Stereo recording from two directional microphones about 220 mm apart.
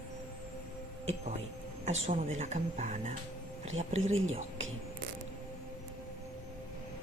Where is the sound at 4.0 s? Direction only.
65° right (ahead or behind).